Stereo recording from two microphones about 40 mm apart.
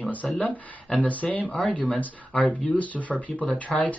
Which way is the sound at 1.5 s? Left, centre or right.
Left.